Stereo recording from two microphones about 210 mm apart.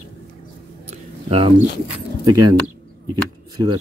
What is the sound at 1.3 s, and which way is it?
Speech, 25° right (ahead or behind).